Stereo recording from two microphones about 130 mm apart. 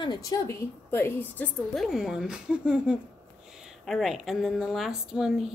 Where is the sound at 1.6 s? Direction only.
Centre (ahead or behind).